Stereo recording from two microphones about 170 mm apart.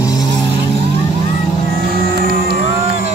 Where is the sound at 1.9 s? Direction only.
60° right (ahead or behind).